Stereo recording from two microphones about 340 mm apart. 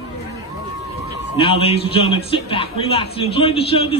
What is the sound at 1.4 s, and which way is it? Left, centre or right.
A man's voice, centre.